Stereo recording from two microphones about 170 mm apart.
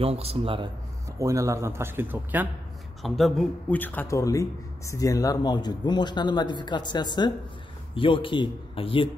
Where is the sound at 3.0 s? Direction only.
Centre (ahead or behind).